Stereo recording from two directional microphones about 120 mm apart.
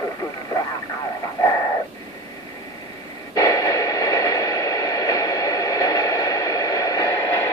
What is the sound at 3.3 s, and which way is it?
Radio, 30° left (ahead or behind).